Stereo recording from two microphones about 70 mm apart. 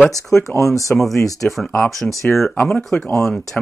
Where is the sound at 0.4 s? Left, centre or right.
Left.